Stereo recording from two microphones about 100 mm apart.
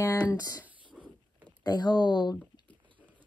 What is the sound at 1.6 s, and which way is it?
Speech, 45° left (ahead or behind).